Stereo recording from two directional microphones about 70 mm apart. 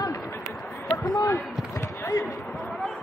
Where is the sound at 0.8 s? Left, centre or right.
Left.